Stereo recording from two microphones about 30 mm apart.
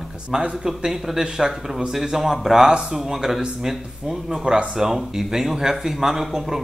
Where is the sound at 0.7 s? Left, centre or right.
Centre.